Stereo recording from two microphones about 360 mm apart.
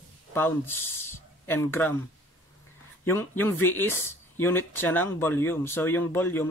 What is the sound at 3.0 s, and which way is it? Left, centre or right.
Speech, centre.